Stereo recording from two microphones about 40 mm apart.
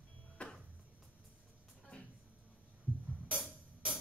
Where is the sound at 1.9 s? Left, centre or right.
Left.